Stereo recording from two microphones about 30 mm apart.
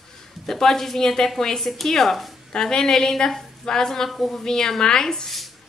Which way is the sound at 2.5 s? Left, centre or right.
Left.